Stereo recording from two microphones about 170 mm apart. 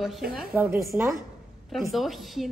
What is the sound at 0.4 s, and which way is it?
Speech, 10° right (ahead or behind).